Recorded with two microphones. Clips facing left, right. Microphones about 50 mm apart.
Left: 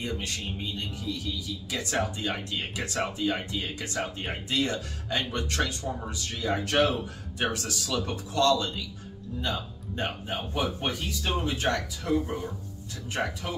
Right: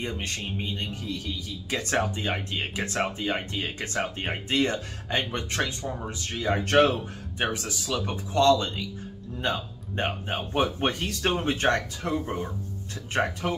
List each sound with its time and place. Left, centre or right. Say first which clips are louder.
0.0 s speech: right 1 dB; right
6.6 s speech: right 5 dB; right
7.3 s speech: right 1 dB; right
9.4 s speech: right 4 dB; right